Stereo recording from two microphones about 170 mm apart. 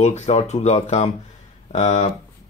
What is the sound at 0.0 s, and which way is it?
Speech, 40° left (ahead or behind).